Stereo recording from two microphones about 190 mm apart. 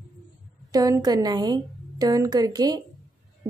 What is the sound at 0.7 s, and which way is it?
A woman's voice, 20° right (ahead or behind).